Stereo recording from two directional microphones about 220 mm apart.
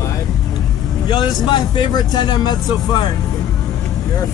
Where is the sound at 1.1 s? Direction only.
20° left (ahead or behind).